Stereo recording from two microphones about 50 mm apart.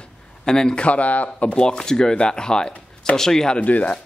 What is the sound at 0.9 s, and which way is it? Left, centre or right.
A man's voice, left.